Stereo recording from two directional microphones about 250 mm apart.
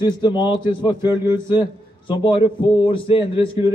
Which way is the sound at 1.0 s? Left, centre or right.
Centre.